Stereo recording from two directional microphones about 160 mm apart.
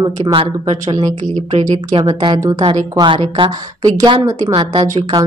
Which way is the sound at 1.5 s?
35° right (ahead or behind).